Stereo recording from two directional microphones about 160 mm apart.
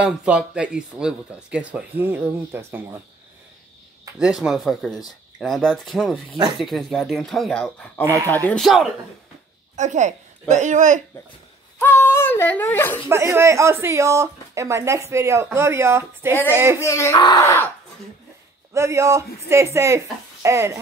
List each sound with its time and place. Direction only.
0.0 s speech: 5° right (ahead or behind)
4.2 s speech: centre (ahead or behind)
6.3 s a man's voice: 25° right (ahead or behind)
6.6 s speech: centre (ahead or behind)
8.0 s a man's voice: 20° right (ahead or behind)
8.5 s speech: centre (ahead or behind)
9.8 s speech: 50° right (ahead or behind)
11.8 s a sound: 15° left (ahead or behind)
13.1 s speech: 15° right (ahead or behind)
16.8 s speech: 20° left (ahead or behind)
17.4 s a sound: 15° left (ahead or behind)
18.7 s a man's voice: 20° right (ahead or behind)